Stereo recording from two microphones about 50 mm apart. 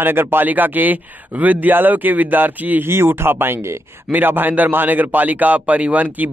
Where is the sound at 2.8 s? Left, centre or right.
Right.